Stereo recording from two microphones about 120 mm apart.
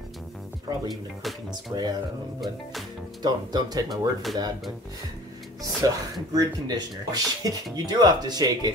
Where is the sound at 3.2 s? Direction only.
35° right (ahead or behind).